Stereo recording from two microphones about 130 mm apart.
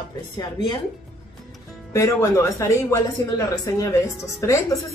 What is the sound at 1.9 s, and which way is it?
Speech, 25° left (ahead or behind).